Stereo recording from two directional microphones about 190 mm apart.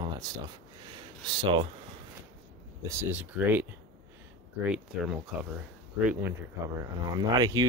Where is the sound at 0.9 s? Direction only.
25° right (ahead or behind).